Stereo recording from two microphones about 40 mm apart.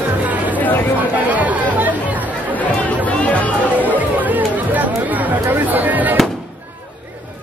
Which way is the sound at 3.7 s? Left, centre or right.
Right.